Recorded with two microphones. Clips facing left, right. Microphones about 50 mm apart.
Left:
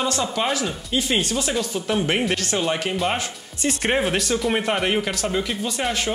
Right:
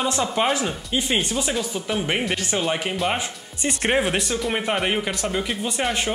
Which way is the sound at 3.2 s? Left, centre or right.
Centre.